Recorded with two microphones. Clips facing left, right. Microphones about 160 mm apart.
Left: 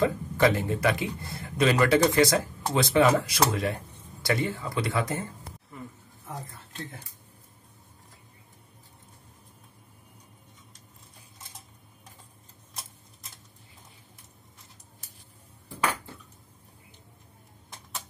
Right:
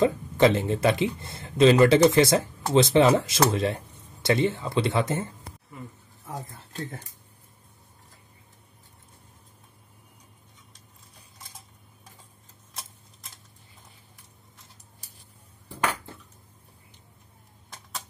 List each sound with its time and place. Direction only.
0.0 s speech: 25° right (ahead or behind)